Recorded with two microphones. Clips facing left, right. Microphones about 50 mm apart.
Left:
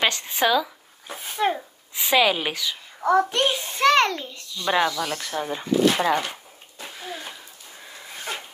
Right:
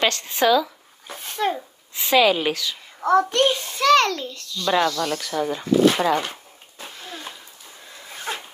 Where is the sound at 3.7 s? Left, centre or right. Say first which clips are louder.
Even; left.